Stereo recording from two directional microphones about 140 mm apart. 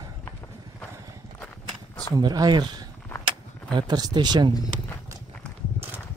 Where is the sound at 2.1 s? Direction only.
30° right (ahead or behind).